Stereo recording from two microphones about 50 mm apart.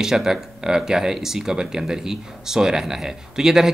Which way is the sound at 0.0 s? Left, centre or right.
Centre.